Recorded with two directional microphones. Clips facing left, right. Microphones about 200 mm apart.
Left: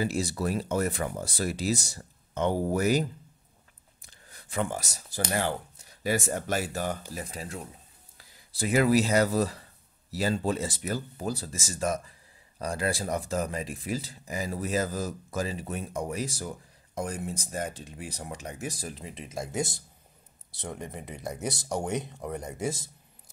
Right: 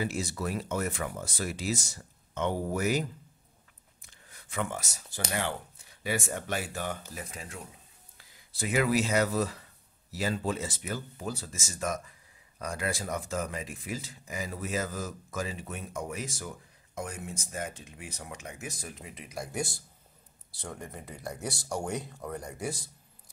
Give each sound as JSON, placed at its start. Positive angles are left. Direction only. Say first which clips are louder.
{"t": 0.0, "sound": "speech", "louder": "left 4 dB", "side_deg": 35}